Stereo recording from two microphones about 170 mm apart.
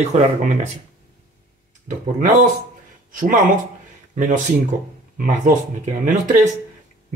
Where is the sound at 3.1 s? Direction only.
50° right (ahead or behind).